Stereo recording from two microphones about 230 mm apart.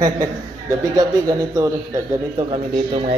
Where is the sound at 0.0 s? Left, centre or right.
Centre.